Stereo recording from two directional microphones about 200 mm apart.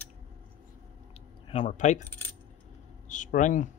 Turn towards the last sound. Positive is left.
turn(degrees=40)  # may be behind; listen again after turning